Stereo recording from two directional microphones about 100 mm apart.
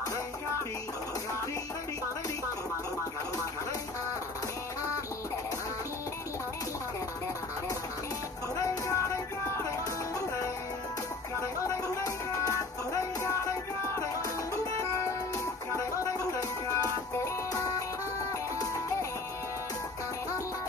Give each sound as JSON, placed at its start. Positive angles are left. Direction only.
{"t": 8.5, "sound": "music", "side_deg": 35}
{"t": 11.6, "sound": "music", "side_deg": 35}
{"t": 14.5, "sound": "music", "side_deg": 30}